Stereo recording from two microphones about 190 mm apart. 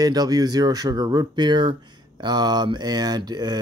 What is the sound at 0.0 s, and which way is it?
Speech, 20° right (ahead or behind).